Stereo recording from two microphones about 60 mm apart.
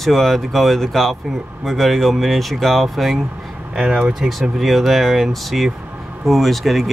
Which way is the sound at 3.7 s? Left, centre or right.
Centre.